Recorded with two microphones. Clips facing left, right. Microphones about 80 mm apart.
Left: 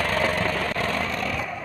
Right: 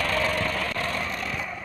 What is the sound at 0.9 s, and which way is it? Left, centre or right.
Vehicle, left.